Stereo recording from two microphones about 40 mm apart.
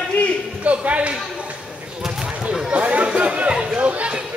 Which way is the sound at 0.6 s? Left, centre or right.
Right.